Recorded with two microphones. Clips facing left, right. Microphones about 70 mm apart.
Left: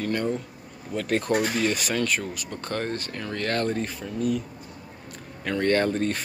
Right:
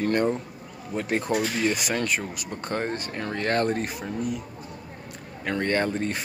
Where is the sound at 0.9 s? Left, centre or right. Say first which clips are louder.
Left 1 dB; centre.